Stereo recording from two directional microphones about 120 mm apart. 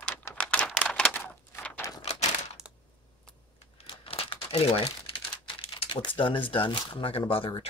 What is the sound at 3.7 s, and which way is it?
Crumpling, 50° left (ahead or behind).